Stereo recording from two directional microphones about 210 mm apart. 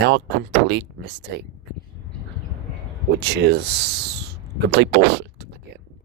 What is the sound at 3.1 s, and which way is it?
Speech, 55° right (ahead or behind).